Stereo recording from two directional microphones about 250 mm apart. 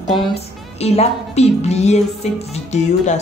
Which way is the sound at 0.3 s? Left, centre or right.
Left.